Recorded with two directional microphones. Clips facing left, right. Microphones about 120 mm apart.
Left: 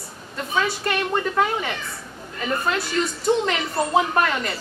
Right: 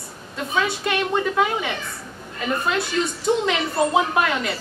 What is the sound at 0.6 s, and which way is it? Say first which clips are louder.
Speech: right 1 dB; 5° right (ahead or behind).